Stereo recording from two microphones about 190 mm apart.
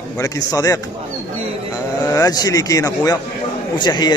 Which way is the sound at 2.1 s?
20° left (ahead or behind).